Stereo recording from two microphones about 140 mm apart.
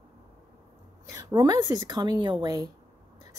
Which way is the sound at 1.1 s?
25° right (ahead or behind).